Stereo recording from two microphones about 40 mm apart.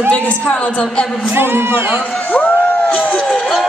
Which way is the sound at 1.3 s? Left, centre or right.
Right.